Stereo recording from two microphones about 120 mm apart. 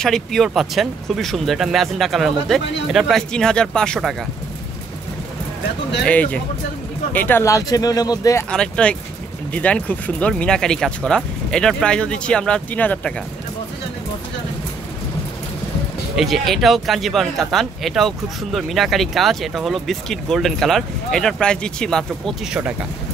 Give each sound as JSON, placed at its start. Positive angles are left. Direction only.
{"t": 0.0, "sound": "speech", "side_deg": 5}
{"t": 6.0, "sound": "speech", "side_deg": 10}
{"t": 7.4, "sound": "speech", "side_deg": 30}
{"t": 8.5, "sound": "speech", "side_deg": 10}
{"t": 16.2, "sound": "speech", "side_deg": 0}
{"t": 22.5, "sound": "speech", "side_deg": -10}